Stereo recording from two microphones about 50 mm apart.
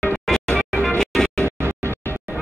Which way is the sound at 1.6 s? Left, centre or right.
Right.